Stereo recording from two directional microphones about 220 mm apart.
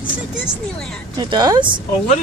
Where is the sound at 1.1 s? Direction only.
20° right (ahead or behind).